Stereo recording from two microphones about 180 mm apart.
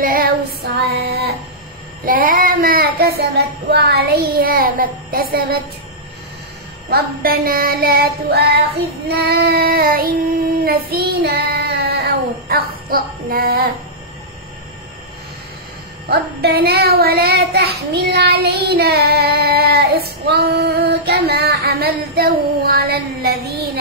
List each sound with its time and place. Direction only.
0.0 s female singing: 55° right (ahead or behind)
2.0 s child singing: 50° right (ahead or behind)
6.9 s child singing: 55° right (ahead or behind)
16.1 s child singing: 60° right (ahead or behind)